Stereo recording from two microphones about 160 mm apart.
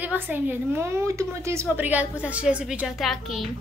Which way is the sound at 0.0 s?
10° right (ahead or behind).